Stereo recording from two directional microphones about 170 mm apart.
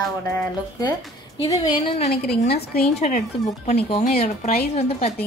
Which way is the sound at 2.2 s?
70° left (ahead or behind).